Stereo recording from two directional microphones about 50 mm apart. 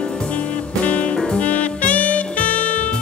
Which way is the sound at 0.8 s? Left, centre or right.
Left.